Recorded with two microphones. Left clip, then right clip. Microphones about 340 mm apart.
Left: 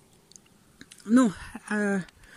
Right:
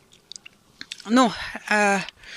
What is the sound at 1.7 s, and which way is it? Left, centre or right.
Speech, right.